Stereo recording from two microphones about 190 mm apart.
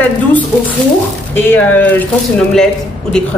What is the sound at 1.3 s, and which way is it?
A woman's voice, 10° left (ahead or behind).